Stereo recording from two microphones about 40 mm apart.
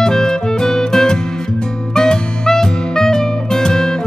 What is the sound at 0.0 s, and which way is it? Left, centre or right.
Music, centre.